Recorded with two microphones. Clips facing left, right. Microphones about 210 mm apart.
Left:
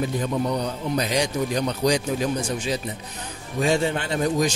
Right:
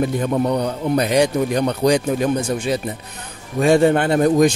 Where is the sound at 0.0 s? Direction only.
60° right (ahead or behind).